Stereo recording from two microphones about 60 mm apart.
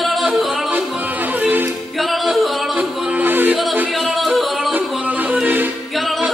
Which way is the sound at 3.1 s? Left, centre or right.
Right.